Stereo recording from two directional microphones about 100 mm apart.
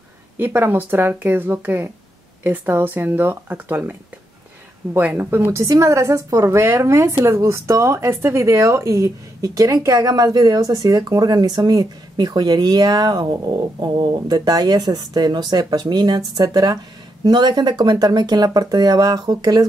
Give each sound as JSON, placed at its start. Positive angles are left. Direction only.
{"t": 0.4, "sound": "a woman's voice", "side_deg": -20}
{"t": 4.9, "sound": "a woman's voice", "side_deg": -20}